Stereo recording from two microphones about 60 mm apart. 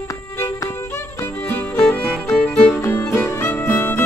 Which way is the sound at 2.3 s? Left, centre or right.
Left.